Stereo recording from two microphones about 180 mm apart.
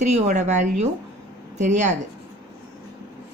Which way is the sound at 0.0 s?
40° right (ahead or behind).